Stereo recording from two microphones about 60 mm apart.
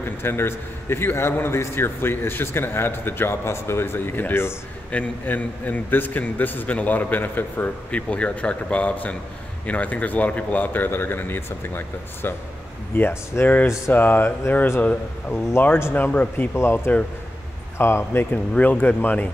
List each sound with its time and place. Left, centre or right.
0.2 s a man's voice: left
5.2 s a man's voice: left
7.9 s a man's voice: left
16.5 s speech: left
18.3 s a man's voice: left